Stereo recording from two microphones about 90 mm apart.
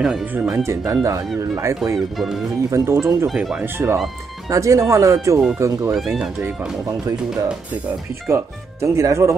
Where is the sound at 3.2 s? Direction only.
5° right (ahead or behind).